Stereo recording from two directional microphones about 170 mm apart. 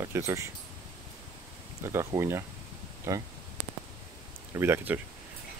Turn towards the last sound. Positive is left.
turn(degrees=-15)  # may be behind; listen again after turning